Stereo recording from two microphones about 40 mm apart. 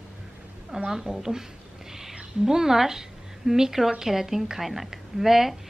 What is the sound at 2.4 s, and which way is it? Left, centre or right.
A woman's voice, centre.